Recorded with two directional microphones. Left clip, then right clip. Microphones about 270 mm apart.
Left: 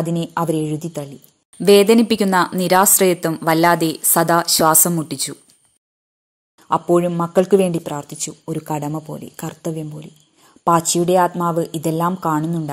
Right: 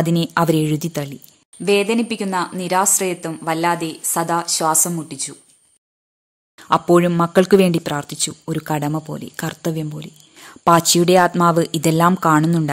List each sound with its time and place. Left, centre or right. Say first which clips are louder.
0.0 s speech: right 3 dB; centre
0.7 s speech: right 2 dB; right
1.6 s speech: left 6 dB; centre
6.7 s speech: right 2 dB; centre
8.9 s speech: right 2 dB; right
9.2 s speech: right 3 dB; centre